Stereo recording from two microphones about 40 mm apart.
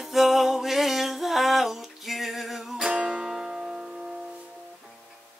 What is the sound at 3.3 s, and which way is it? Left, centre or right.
Music, centre.